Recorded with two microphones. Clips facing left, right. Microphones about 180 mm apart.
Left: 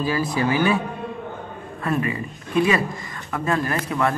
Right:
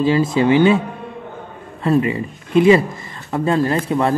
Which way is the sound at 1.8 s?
25° right (ahead or behind).